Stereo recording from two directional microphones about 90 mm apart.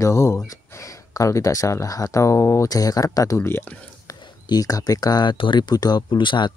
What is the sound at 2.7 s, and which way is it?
Speech, 40° left (ahead or behind).